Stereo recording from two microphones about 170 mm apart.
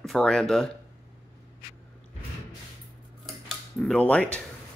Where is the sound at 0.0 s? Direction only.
5° left (ahead or behind).